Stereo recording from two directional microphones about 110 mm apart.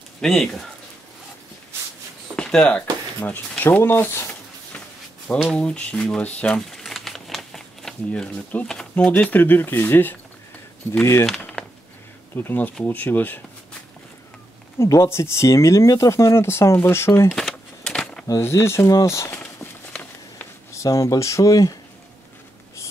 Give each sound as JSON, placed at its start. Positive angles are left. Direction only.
{"t": 0.2, "sound": "speech", "side_deg": 0}
{"t": 2.3, "sound": "speech", "side_deg": 10}
{"t": 5.3, "sound": "speech", "side_deg": 5}
{"t": 6.7, "sound": "shuffling cards", "side_deg": 0}
{"t": 8.9, "sound": "speech", "side_deg": 15}
{"t": 11.2, "sound": "a sound", "side_deg": 5}
{"t": 12.4, "sound": "speech", "side_deg": 20}
{"t": 14.8, "sound": "speech", "side_deg": 25}
{"t": 17.3, "sound": "a sound", "side_deg": 5}
{"t": 18.2, "sound": "speech", "side_deg": 25}
{"t": 20.0, "sound": "a sound", "side_deg": 20}
{"t": 20.8, "sound": "speech", "side_deg": 30}